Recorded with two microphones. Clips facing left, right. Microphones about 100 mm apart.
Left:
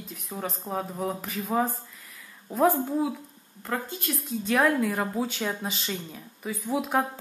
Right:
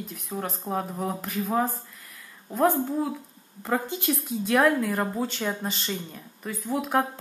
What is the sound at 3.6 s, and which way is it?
Speech, 15° right (ahead or behind).